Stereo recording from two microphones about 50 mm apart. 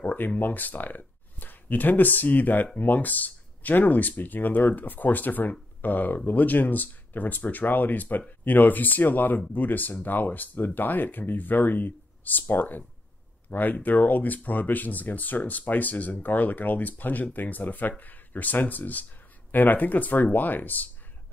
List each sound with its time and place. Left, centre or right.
0.0 s speech: left